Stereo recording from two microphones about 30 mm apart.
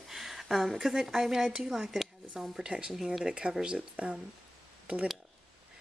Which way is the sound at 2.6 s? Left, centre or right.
Right.